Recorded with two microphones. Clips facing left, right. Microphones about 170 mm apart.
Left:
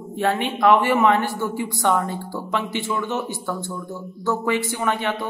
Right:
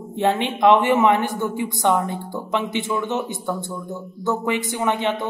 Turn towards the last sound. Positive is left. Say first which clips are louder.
# right 2 dB
turn(degrees=-20)  # may be behind; listen again after turning